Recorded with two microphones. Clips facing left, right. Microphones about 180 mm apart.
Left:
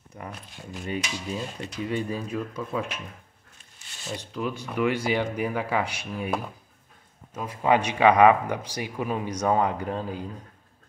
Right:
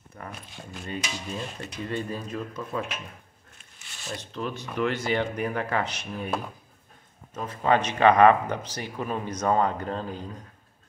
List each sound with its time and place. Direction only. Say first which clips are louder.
0.2 s speech: left 1 dB; 15° left (ahead or behind)
4.1 s speech: left 2 dB; 10° left (ahead or behind)